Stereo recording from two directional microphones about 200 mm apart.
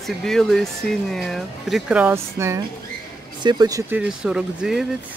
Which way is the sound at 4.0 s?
5° right (ahead or behind).